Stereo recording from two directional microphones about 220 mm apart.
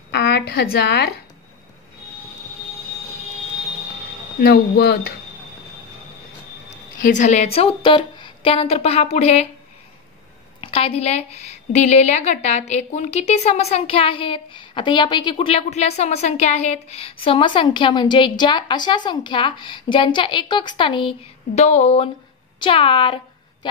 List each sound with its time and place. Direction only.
0.1 s a sound: 50° left (ahead or behind)
4.4 s speech: 45° left (ahead or behind)
7.0 s a woman's voice: 35° left (ahead or behind)
10.6 s a woman's voice: 25° left (ahead or behind)